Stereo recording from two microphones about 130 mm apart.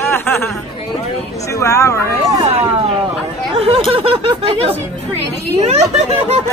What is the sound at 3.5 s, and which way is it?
Speech, 50° right (ahead or behind).